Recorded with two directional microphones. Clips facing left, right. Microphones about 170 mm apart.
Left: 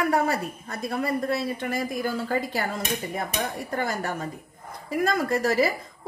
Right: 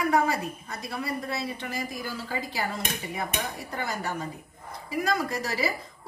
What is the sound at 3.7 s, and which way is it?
A woman's voice, 50° left (ahead or behind).